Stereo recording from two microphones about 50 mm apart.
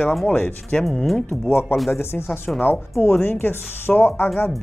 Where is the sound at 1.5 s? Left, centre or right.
Left.